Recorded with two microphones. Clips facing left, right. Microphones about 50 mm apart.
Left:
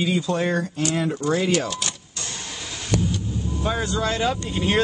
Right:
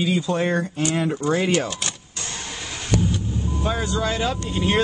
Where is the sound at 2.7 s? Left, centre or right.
Right.